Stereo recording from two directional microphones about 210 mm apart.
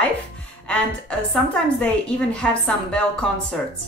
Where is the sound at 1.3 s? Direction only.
5° left (ahead or behind).